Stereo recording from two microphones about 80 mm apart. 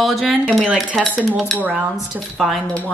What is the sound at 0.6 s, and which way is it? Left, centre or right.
Speech, centre.